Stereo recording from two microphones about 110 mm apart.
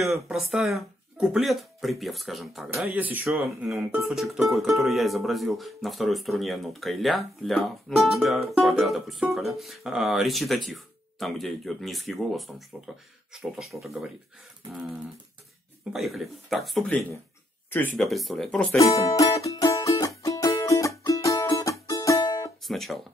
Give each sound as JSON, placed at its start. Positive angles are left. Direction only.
{"t": 0.3, "sound": "speech", "side_deg": -5}
{"t": 2.9, "sound": "speech", "side_deg": -15}
{"t": 3.3, "sound": "speech", "side_deg": 0}
{"t": 15.9, "sound": "speech", "side_deg": 0}
{"t": 17.6, "sound": "speech", "side_deg": 20}
{"t": 17.9, "sound": "speech", "side_deg": 0}
{"t": 18.8, "sound": "music", "side_deg": 30}
{"t": 22.7, "sound": "speech", "side_deg": 0}